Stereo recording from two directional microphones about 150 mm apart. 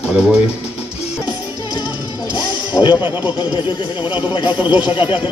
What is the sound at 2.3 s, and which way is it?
Music, 30° left (ahead or behind).